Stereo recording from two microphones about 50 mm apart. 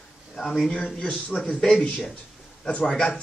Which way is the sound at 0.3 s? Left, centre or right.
Centre.